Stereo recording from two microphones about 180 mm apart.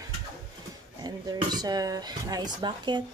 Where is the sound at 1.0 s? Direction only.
20° right (ahead or behind).